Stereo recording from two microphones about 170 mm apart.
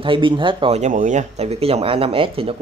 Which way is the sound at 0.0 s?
30° right (ahead or behind).